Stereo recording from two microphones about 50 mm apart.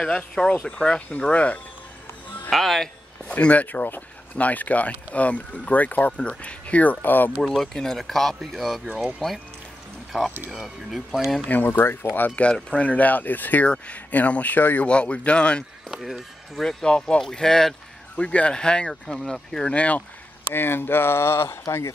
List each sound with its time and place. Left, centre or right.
0.7 s speech: centre
2.5 s a sound: centre
3.3 s speech: left
7.0 s speech: left
7.4 s speech: centre
10.1 s speech: centre
11.4 s speech: left
12.5 s speech: centre; by 14.9 s left
14.9 s speech: left
15.9 s a sound: centre
16.6 s speech: centre
18.1 s speech: left
19.7 s speech: left
20.5 s speech: left